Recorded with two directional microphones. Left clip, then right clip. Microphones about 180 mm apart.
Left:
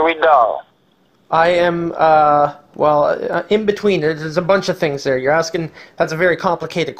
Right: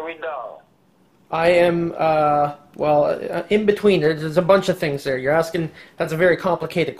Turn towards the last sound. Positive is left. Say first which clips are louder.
# left 3 dB
turn(degrees=35)  # may be behind; listen again after turning